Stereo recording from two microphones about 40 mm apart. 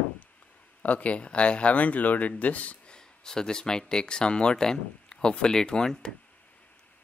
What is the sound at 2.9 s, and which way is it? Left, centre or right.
Speech, centre.